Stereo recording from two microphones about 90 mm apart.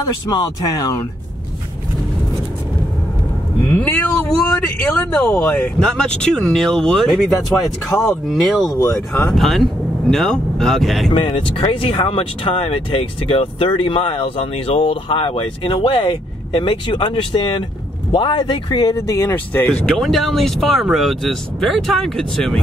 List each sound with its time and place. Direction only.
0.0 s speech: 45° left (ahead or behind)
3.6 s speech: 15° left (ahead or behind); by 8.7 s centre (ahead or behind)
8.7 s speech: 30° left (ahead or behind)
9.4 s speech: centre (ahead or behind)
11.1 s speech: 80° left; by 18.9 s 60° left (ahead or behind)
18.9 s speech: 35° left (ahead or behind)
19.2 s speech: 20° left (ahead or behind)
19.9 s speech: 5° left (ahead or behind)